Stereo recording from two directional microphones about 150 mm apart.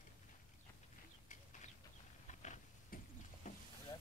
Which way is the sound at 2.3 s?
55° left (ahead or behind).